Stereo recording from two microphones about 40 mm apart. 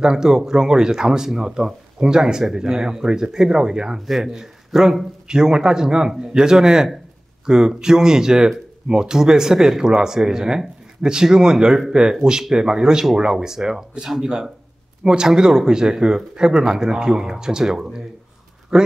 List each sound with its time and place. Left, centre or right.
0.0 s a man's voice: centre